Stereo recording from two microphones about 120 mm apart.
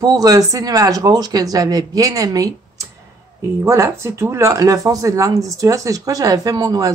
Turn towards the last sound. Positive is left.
turn(degrees=-30)  # may be behind; listen again after turning